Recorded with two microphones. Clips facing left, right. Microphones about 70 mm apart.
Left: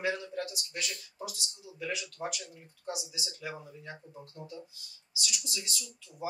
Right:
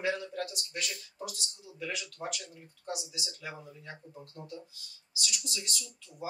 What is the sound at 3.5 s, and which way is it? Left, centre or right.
Speech, left.